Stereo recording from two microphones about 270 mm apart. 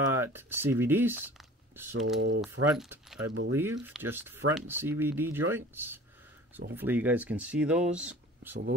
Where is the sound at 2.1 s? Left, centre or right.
Right.